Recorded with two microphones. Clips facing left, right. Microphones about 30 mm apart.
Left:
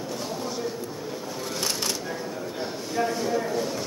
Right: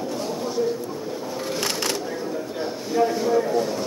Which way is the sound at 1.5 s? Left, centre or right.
Right.